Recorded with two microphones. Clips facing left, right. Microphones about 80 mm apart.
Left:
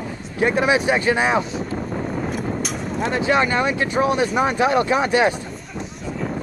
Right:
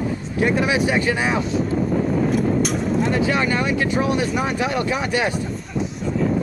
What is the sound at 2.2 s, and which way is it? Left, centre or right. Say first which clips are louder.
Vehicle: right 6 dB; centre.